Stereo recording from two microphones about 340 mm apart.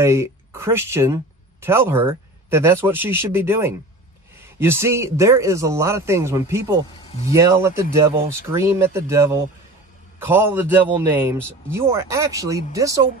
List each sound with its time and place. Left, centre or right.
0.0 s a man's voice: centre
7.1 s speech: centre
7.3 s a man's voice: centre